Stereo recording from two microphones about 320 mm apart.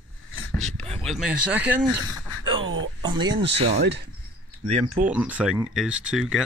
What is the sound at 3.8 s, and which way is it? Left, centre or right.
Speech, right.